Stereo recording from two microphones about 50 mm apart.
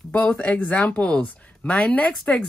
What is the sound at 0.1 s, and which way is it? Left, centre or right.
Speech, left.